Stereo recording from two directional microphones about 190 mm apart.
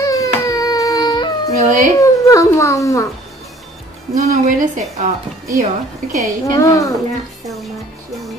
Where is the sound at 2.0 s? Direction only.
15° left (ahead or behind).